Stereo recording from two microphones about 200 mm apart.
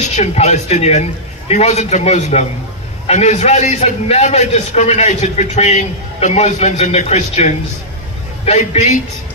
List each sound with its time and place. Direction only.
0.0 s a man's voice: 35° left (ahead or behind)